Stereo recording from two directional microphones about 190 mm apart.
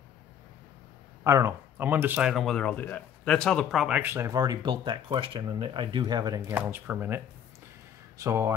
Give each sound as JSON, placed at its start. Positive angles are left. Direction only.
{"t": 1.2, "sound": "speech", "side_deg": -15}
{"t": 8.2, "sound": "speech", "side_deg": -15}